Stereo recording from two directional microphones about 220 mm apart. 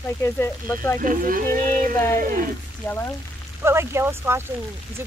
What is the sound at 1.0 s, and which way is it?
Speech, 40° right (ahead or behind).